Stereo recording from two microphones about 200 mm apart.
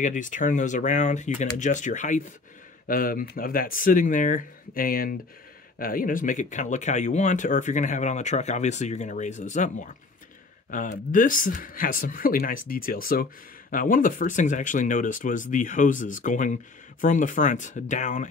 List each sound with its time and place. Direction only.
0.0 s speech: 40° left (ahead or behind)